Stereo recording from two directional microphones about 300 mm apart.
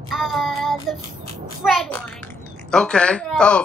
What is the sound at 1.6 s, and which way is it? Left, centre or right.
Speech, centre.